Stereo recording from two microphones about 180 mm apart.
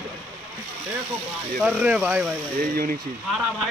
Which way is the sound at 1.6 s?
5° right (ahead or behind).